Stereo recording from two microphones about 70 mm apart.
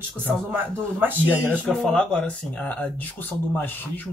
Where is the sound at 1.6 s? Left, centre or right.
Centre.